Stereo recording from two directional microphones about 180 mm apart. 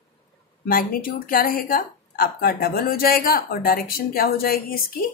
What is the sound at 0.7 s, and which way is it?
Speech, 50° left (ahead or behind).